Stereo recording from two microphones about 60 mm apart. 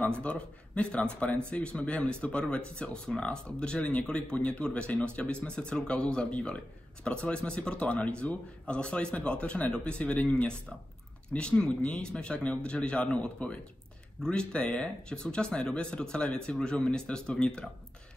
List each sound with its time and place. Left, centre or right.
0.0 s speech: left